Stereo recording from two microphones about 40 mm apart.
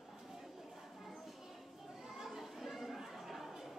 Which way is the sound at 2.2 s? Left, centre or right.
Centre.